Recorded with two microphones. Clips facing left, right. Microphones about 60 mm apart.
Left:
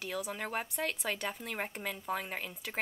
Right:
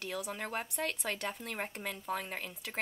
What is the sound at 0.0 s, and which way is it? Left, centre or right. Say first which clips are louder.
Speech: left 1 dB; centre.